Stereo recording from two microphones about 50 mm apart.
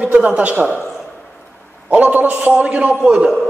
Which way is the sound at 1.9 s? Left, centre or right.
Right.